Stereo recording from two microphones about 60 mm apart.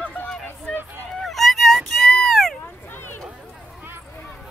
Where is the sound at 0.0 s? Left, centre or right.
Left.